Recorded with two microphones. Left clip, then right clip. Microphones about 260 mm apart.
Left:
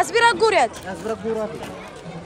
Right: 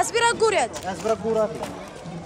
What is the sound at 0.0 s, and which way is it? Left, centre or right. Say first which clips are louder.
Speech: left 4 dB; centre.